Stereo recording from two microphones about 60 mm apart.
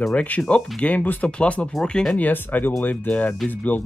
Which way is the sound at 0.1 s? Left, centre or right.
Left.